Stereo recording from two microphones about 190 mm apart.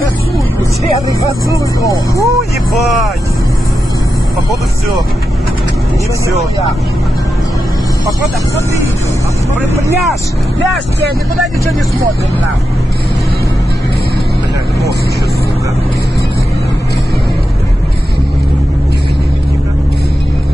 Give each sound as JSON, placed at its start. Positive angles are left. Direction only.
{"t": 1.8, "sound": "speech", "side_deg": 15}
{"t": 2.7, "sound": "speech", "side_deg": 0}